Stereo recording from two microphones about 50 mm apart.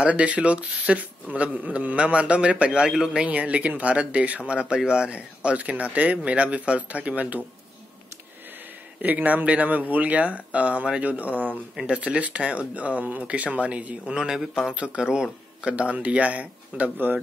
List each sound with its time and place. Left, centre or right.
0.0 s speech: right
2.9 s speech: centre
3.2 s speech: right
9.0 s speech: right; by 15.2 s centre
15.7 s speech: right